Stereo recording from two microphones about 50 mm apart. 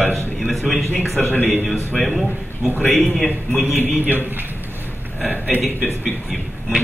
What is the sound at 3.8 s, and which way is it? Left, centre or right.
Speech, right.